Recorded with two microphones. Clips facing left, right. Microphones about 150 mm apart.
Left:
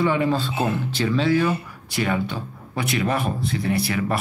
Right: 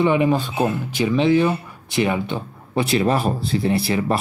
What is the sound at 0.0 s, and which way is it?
Speech, 20° right (ahead or behind).